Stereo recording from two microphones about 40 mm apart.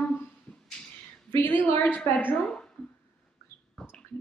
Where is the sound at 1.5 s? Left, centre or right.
Left.